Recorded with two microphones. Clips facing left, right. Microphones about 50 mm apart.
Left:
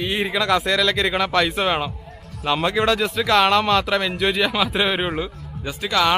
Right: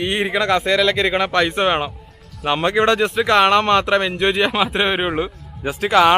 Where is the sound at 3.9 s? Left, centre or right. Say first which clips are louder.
Right 3 dB; centre.